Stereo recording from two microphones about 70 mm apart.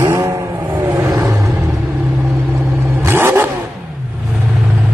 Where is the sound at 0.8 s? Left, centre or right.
Right.